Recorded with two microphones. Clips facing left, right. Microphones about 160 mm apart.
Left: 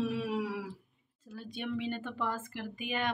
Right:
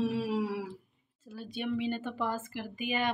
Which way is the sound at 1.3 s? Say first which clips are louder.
Right 3 dB; 5° right (ahead or behind).